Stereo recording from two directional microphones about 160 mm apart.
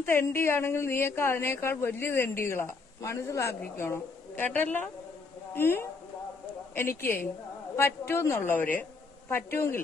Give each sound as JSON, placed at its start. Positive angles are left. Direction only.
{"t": 0.0, "sound": "a woman's voice", "side_deg": 15}